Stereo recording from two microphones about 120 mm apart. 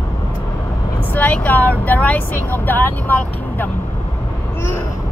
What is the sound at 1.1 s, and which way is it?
Vehicle, 15° left (ahead or behind).